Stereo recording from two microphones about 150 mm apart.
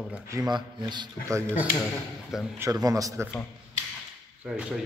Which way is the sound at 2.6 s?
25° right (ahead or behind).